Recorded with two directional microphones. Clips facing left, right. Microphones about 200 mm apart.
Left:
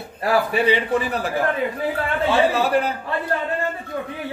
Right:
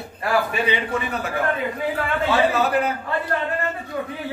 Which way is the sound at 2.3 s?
30° left (ahead or behind).